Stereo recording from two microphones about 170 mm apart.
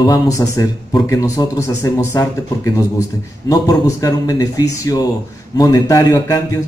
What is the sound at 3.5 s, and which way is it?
Speech, 20° left (ahead or behind).